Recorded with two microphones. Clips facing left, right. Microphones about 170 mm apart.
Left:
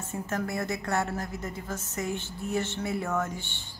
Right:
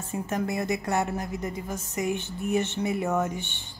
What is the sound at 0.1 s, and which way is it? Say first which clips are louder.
A woman's voice: right 3 dB; 15° right (ahead or behind).